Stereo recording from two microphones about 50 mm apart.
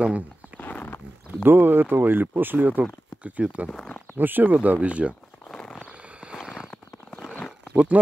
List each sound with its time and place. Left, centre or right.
0.6 s roaring cats: left
1.4 s speech: right
2.8 s speech: right
4.2 s speech: right
4.6 s speech: right
5.5 s a sound: centre
7.7 s speech: right